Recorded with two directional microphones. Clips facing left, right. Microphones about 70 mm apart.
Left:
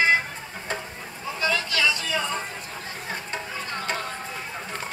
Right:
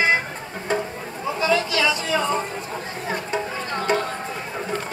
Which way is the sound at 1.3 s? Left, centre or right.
Centre.